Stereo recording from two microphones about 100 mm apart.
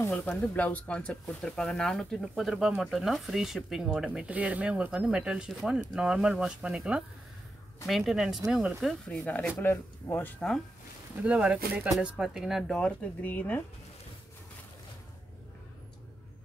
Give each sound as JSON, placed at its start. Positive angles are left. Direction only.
{"t": 0.1, "sound": "speech", "side_deg": 10}
{"t": 9.0, "sound": "speech", "side_deg": 10}
{"t": 11.2, "sound": "speech", "side_deg": -10}
{"t": 12.2, "sound": "speech", "side_deg": -5}